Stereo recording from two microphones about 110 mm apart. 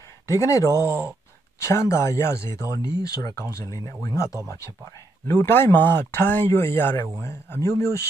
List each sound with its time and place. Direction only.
0.3 s speech: 30° left (ahead or behind)
0.8 s speech: 15° right (ahead or behind)
1.6 s speech: 25° left (ahead or behind)